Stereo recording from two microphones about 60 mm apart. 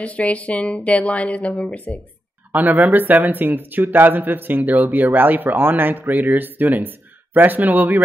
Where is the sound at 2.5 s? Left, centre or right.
Right.